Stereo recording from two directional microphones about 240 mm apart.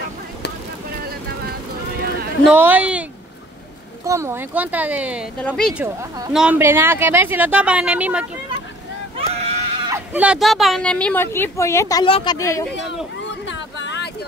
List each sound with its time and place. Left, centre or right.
2.4 s speech: centre
5.9 s speech: centre
9.3 s screaming: right
9.8 s speech: centre
13.2 s vehicle: left